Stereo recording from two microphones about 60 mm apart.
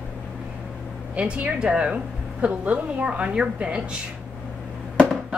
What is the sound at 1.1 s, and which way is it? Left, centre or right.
A woman's voice, centre.